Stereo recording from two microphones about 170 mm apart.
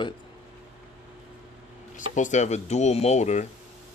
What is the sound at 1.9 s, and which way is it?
Speech, 45° left (ahead or behind).